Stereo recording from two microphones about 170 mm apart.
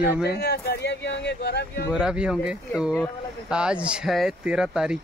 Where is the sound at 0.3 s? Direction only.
70° left (ahead or behind).